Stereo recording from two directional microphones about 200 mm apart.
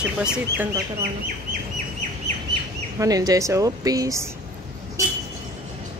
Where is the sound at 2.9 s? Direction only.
20° right (ahead or behind).